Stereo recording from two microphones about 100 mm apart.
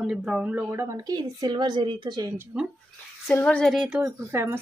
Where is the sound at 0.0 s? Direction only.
5° right (ahead or behind); by 2.3 s 45° right (ahead or behind).